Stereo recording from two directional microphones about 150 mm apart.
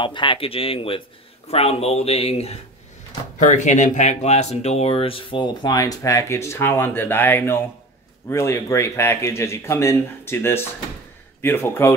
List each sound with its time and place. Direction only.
0.0 s speech: 35° left (ahead or behind)
3.3 s speech: 55° left (ahead or behind); by 11.9 s 15° left (ahead or behind)